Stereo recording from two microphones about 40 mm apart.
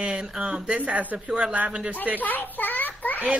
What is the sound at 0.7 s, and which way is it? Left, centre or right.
Speech, right.